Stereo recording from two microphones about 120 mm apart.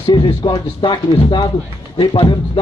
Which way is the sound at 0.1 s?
45° left (ahead or behind).